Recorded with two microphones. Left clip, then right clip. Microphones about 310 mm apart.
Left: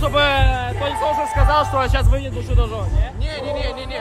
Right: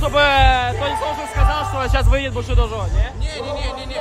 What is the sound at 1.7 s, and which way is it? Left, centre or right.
A man's voice, centre.